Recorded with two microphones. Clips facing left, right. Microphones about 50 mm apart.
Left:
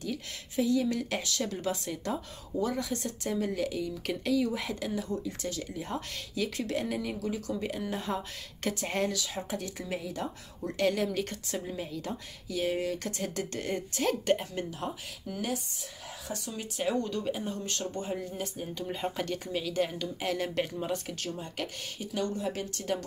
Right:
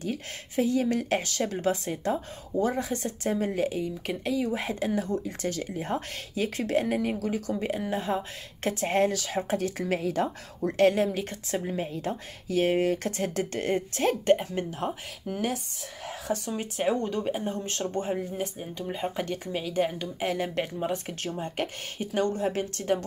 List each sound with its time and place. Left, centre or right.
0.0 s speech: right
4.0 s speech: centre
4.6 s speech: right
8.0 s speech: centre
8.7 s speech: right
9.8 s speech: right
10.7 s speech: right
14.7 s speech: right
16.7 s speech: right
21.2 s speech: right